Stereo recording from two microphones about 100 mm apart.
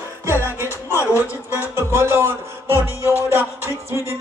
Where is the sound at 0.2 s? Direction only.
25° right (ahead or behind).